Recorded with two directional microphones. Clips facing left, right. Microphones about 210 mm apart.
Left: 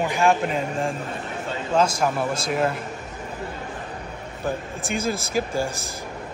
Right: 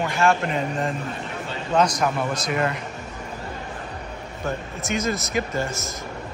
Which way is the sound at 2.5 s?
5° left (ahead or behind).